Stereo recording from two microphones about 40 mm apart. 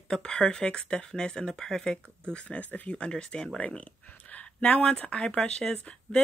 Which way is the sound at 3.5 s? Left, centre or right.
Left.